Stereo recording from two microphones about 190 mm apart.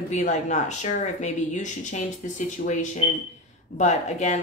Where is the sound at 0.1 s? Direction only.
40° left (ahead or behind).